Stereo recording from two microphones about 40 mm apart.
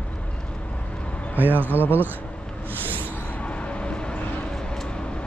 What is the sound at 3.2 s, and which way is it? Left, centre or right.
Vehicle, left.